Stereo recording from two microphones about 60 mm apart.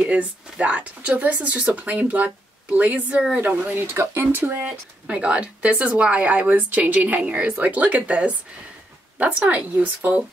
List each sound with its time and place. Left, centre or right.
0.0 s speech: right
4.0 s speech: right
4.3 s speech: right